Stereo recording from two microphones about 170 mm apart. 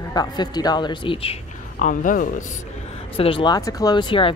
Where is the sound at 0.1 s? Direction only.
25° left (ahead or behind).